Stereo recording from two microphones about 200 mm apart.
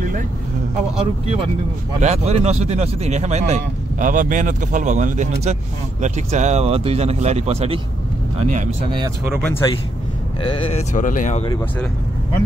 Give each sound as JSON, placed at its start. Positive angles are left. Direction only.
{"t": 0.9, "sound": "speech", "side_deg": -30}
{"t": 8.9, "sound": "speech", "side_deg": -15}
{"t": 9.4, "sound": "speech", "side_deg": 10}
{"t": 10.5, "sound": "speech", "side_deg": 30}